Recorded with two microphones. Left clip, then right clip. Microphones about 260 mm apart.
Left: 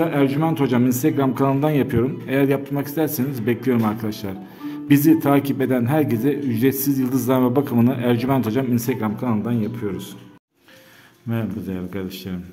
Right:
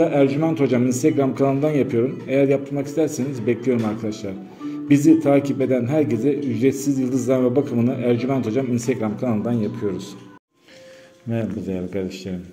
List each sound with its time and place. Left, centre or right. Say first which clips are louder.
0.0 s a man's voice: right 2 dB; centre
11.3 s speech: right 2 dB; centre